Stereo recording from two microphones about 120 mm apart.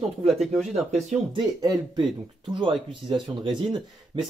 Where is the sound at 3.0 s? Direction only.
40° right (ahead or behind).